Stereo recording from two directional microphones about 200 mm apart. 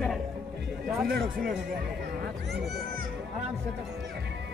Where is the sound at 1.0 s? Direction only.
50° right (ahead or behind).